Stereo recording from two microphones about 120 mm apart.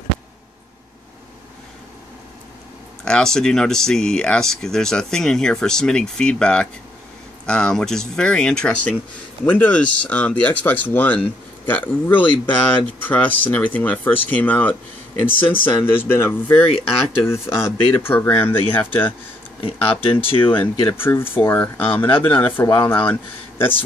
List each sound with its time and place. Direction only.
3.1 s speech: 5° left (ahead or behind)
19.6 s speech: 50° left (ahead or behind)
20.4 s speech: 15° left (ahead or behind)